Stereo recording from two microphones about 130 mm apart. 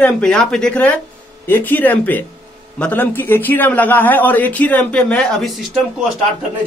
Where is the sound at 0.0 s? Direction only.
5° left (ahead or behind).